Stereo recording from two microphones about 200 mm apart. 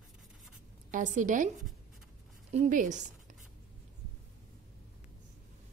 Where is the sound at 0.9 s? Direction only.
40° right (ahead or behind).